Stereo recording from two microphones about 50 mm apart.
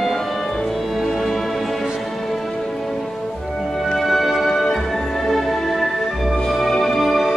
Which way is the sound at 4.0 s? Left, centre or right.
Centre.